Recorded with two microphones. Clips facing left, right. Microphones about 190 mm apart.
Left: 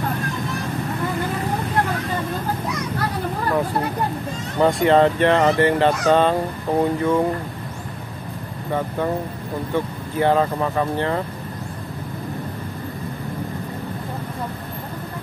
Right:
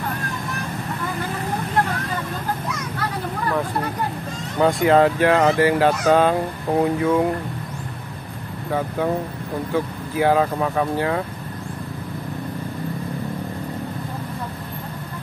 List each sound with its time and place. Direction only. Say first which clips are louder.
4.6 s speech: even; centre (ahead or behind)
10.1 s speech: even; 5° right (ahead or behind)